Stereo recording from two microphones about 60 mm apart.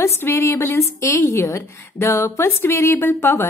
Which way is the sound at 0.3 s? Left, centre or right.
Left.